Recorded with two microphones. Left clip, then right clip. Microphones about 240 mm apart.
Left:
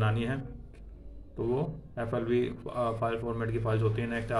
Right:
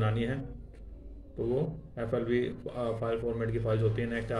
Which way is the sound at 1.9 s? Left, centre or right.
Centre.